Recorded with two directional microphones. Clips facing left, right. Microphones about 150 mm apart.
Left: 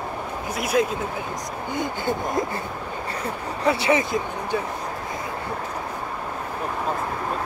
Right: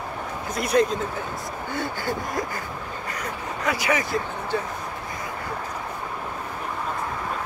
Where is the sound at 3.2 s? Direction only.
30° left (ahead or behind).